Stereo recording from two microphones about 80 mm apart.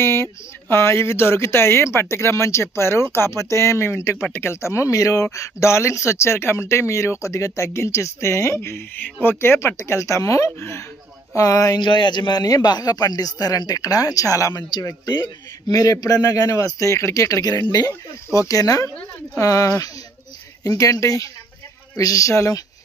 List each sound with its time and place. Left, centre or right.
0.0 s a man's voice: left
11.8 s a man's voice: left
14.6 s a man's voice: left